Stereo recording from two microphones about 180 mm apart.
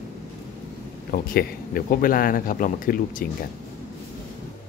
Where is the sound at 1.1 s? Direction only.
55° left (ahead or behind).